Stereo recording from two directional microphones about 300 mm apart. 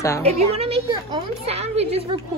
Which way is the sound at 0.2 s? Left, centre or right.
Centre.